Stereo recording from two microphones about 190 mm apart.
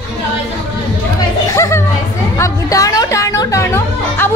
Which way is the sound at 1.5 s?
15° left (ahead or behind).